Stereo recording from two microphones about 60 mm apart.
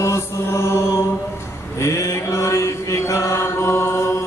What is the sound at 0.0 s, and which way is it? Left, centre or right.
Mantra, left.